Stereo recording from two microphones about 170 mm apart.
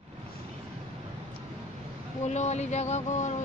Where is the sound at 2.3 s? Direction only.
40° left (ahead or behind).